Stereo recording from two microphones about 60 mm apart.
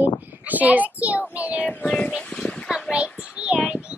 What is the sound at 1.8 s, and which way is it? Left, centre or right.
Speech, left.